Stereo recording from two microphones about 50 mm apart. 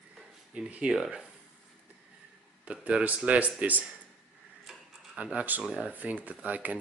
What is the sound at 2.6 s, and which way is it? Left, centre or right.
Speech, right.